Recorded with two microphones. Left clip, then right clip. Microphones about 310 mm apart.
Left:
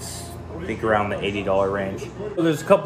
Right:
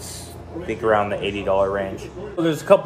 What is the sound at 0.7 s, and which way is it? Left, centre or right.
Speech, centre.